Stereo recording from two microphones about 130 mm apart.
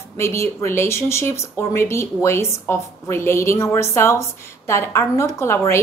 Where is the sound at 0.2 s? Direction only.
20° left (ahead or behind).